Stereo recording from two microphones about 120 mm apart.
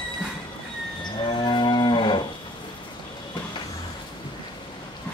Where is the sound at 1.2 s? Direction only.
40° left (ahead or behind).